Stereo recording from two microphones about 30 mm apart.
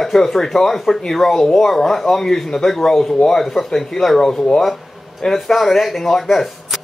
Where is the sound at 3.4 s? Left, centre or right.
Centre.